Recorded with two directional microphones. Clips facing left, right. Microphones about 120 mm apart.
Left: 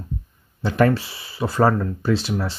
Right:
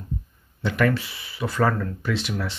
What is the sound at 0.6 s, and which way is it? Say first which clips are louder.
Speech: left 4 dB; 35° left (ahead or behind).